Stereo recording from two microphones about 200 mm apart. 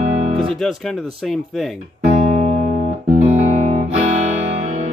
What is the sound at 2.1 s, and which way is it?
Music, 35° right (ahead or behind).